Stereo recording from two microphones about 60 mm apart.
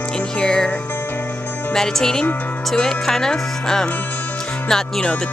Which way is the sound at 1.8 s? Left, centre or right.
Centre.